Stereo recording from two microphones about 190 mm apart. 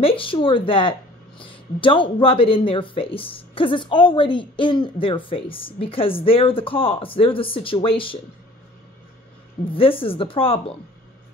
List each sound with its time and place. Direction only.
0.0 s speech: 30° left (ahead or behind)
9.7 s speech: 30° left (ahead or behind)